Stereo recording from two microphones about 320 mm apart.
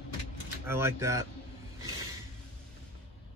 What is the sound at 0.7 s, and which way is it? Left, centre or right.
Speech, centre.